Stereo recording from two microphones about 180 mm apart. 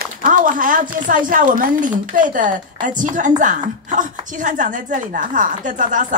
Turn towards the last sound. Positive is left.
turn(degrees=-45)  # may be behind; listen again after turning